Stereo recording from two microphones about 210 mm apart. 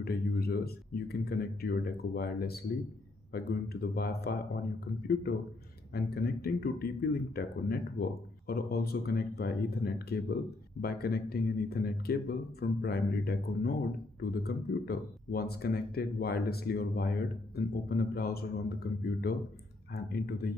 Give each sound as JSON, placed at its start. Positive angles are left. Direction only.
{"t": 0.0, "sound": "speech", "side_deg": 45}